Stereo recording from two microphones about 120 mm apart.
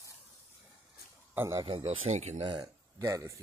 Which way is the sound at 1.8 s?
60° right (ahead or behind).